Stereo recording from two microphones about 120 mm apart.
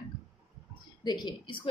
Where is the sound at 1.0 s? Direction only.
40° left (ahead or behind).